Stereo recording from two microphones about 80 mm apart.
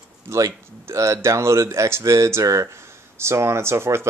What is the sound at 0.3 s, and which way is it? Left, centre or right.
Speech, right.